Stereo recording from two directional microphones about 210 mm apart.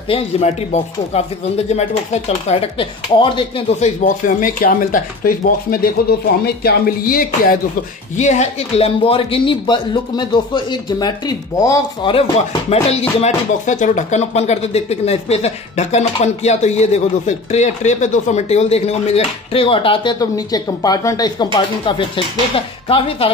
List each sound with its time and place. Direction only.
0.1 s speech: 30° left (ahead or behind)
2.4 s speech: 30° left (ahead or behind)
4.0 s speech: 40° left (ahead or behind)
8.2 s speech: 35° left (ahead or behind)